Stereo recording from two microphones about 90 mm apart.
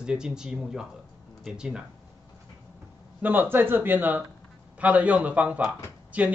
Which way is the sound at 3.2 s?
20° right (ahead or behind).